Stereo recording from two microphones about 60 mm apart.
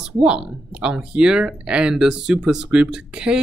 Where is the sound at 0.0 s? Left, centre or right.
Centre.